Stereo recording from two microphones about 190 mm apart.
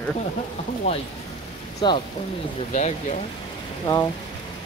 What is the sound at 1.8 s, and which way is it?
Speech, 25° left (ahead or behind).